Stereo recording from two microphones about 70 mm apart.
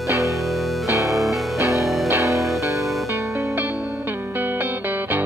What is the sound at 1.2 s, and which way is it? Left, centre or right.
Music, centre.